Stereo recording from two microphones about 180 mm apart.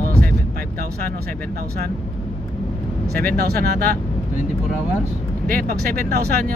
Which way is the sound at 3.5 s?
60° right (ahead or behind).